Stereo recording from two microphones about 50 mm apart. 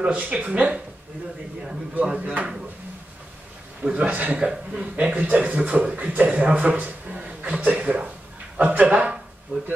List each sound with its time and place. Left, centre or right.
0.0 s a man's voice: right
2.0 s a man's voice: right
3.8 s a man's voice: right
4.4 s a man's voice: centre
5.1 s a man's voice: right
8.8 s a man's voice: centre